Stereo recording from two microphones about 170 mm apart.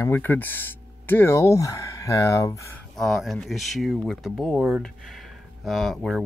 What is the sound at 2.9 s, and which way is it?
Speech, centre (ahead or behind).